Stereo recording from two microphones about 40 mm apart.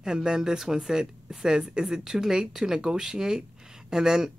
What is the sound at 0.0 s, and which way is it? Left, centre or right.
Speech, centre.